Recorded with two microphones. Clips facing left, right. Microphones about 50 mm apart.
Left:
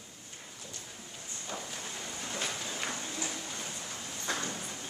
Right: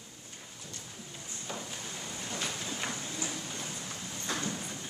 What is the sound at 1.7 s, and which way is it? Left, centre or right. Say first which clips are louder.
Wind: even; centre.